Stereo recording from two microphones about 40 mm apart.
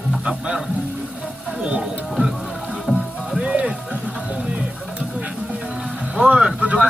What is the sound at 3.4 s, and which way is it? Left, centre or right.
Music, right.